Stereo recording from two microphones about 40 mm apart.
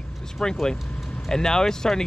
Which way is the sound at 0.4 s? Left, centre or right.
Centre.